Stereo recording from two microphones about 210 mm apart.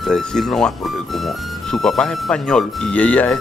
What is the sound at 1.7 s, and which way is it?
Speech, 5° left (ahead or behind).